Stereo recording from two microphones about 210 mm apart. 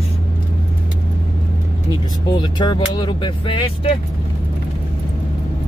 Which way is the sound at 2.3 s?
20° left (ahead or behind).